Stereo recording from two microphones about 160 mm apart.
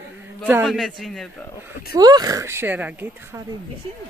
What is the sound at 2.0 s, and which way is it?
Speech, 25° right (ahead or behind).